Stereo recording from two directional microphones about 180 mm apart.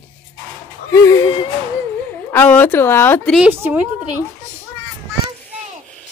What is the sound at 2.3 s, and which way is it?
A woman's voice, 10° left (ahead or behind).